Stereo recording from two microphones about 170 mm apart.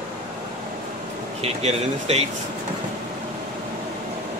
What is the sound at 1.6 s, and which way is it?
Speech, 40° right (ahead or behind).